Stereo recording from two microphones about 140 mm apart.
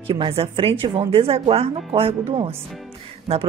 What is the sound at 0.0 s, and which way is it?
Speech, 40° right (ahead or behind).